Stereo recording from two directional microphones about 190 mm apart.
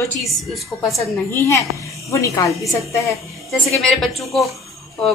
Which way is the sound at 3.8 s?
Centre (ahead or behind).